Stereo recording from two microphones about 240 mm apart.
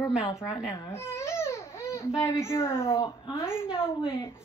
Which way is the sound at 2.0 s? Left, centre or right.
Centre.